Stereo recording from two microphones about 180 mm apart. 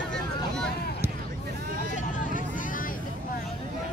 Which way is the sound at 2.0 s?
45° left (ahead or behind).